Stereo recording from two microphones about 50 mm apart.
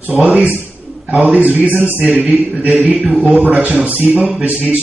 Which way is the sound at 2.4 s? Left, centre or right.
Right.